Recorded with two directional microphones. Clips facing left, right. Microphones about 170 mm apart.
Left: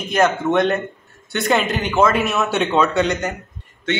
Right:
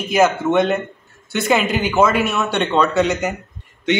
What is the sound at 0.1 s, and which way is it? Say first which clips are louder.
A man's voice: right 1 dB; 5° right (ahead or behind).